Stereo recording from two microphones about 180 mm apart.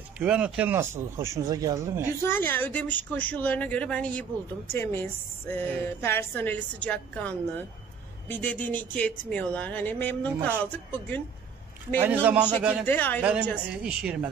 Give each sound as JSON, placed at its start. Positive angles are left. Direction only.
{"t": 0.2, "sound": "speech", "side_deg": -5}
{"t": 2.2, "sound": "a woman's voice", "side_deg": 10}
{"t": 12.0, "sound": "speech", "side_deg": -10}
{"t": 12.8, "sound": "a woman's voice", "side_deg": 10}
{"t": 13.2, "sound": "speech", "side_deg": -5}